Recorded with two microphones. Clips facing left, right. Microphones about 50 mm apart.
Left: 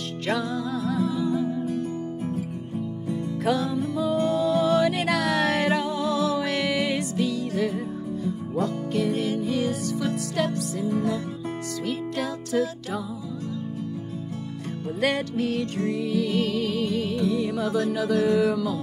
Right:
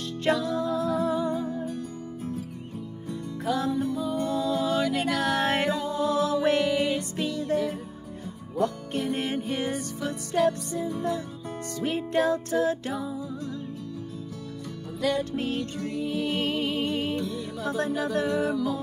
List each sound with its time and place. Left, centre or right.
0.3 s music: left
1.0 s music: right
4.2 s music: left
5.2 s music: right
5.7 s music: left
6.0 s music: right
8.9 s music: right
11.8 s music: right
15.0 s music: left
15.3 s music: right
17.2 s music: left
17.6 s music: right
18.2 s music: left